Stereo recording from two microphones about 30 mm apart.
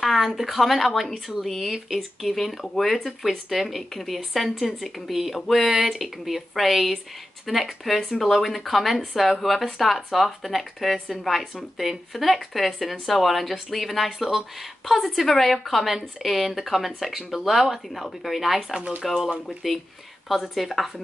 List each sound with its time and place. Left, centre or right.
0.0 s a sound: centre
0.4 s speech: centre
18.6 s speech: right
19.2 s speech: centre